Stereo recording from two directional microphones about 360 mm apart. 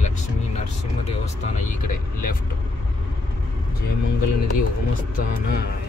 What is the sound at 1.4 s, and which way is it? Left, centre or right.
Speech, left.